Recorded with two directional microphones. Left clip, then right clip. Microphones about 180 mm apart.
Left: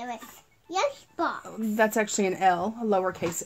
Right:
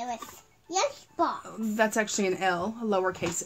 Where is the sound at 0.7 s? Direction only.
15° right (ahead or behind).